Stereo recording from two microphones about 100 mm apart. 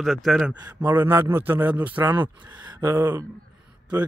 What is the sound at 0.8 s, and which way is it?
A man's voice, 20° right (ahead or behind).